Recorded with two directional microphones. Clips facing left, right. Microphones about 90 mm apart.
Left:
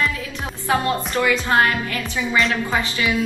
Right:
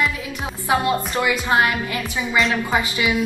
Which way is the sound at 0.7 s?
15° right (ahead or behind).